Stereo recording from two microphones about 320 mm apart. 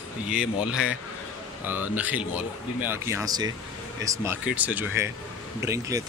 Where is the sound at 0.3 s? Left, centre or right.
Centre.